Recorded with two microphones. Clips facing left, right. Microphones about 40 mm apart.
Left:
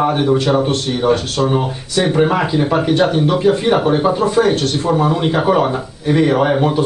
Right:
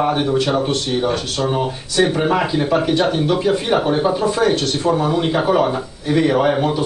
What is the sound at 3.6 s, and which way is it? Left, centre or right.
Speech, centre.